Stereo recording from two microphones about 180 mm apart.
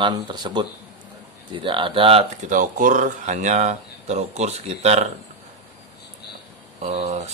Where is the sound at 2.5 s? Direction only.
50° right (ahead or behind).